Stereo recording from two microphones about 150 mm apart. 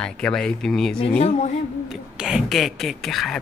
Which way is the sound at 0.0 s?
5° left (ahead or behind).